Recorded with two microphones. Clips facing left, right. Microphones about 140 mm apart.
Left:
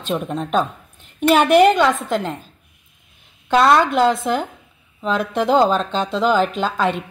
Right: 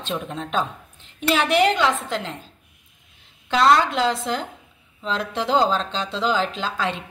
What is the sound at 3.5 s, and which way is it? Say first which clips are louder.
Speech: left 3 dB; 55° left (ahead or behind).